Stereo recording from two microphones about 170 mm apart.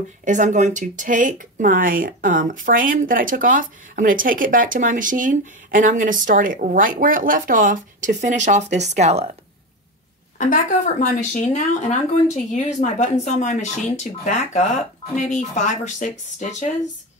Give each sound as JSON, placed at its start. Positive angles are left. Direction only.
{"t": 0.2, "sound": "speech", "side_deg": -45}
{"t": 10.3, "sound": "speech", "side_deg": 50}